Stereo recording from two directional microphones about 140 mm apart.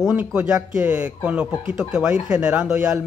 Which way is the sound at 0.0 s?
10° right (ahead or behind).